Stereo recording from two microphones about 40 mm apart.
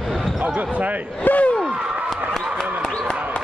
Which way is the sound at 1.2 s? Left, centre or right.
Left.